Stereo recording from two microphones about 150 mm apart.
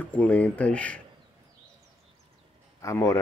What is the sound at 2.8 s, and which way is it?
Speech, 20° left (ahead or behind).